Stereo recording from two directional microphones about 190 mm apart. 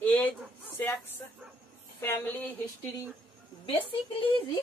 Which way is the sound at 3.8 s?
25° left (ahead or behind).